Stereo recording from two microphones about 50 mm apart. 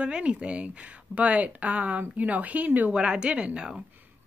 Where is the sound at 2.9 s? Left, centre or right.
Centre.